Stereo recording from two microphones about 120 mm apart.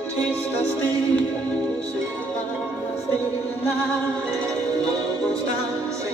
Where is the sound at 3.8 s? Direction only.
10° left (ahead or behind).